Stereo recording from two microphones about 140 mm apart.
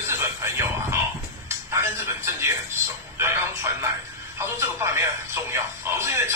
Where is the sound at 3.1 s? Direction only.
20° right (ahead or behind).